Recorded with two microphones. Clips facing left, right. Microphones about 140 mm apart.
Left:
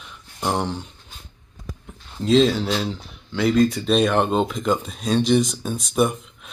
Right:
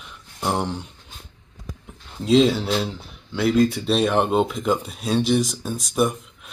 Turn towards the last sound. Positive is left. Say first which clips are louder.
# left 1 dB
turn(degrees=0)  # may be behind; listen again after turning